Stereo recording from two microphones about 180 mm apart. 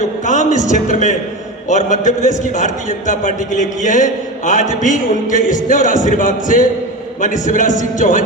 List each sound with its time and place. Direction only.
0.2 s a man's voice: 45° left (ahead or behind)